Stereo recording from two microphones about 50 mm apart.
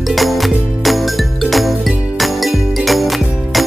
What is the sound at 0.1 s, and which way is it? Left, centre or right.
Music, centre.